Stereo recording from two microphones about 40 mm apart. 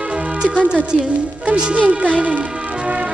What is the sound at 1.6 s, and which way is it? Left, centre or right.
Speech, right.